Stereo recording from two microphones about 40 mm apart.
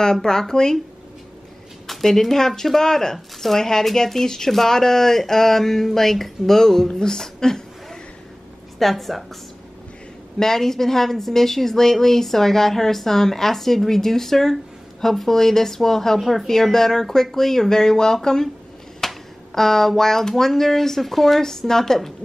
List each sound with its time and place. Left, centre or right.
0.0 s a woman's voice: centre
1.9 s a woman's voice: centre
8.7 s a woman's voice: centre
10.4 s a woman's voice: centre
16.2 s a woman's voice: centre